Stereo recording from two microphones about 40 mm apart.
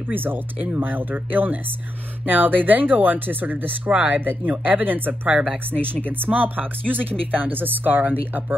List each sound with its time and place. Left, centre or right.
0.1 s speech: right